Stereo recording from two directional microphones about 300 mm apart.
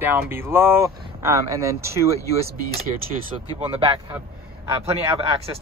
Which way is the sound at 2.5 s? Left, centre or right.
Right.